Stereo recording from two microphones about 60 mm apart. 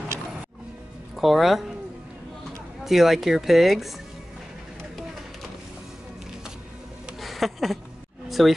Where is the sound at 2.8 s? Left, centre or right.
Centre.